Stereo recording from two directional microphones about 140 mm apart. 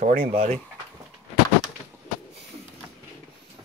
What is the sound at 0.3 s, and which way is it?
Speech, 45° right (ahead or behind).